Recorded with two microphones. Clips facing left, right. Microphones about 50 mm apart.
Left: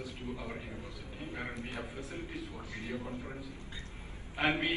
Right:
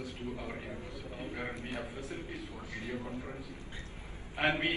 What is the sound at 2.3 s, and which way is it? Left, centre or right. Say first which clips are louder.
Speech: even; right.